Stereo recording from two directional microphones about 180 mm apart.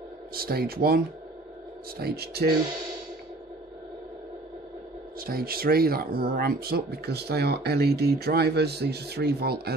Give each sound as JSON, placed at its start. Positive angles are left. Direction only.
{"t": 0.3, "sound": "speech", "side_deg": -60}
{"t": 5.2, "sound": "speech", "side_deg": -55}